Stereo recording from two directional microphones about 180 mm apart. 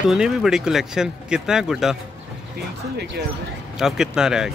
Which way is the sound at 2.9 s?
65° right (ahead or behind).